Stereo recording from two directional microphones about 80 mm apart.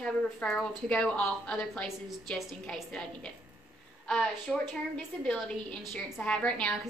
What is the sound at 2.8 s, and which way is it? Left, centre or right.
A woman's voice, centre.